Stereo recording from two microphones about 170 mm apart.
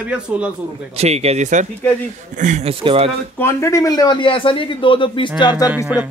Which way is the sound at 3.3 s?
15° left (ahead or behind).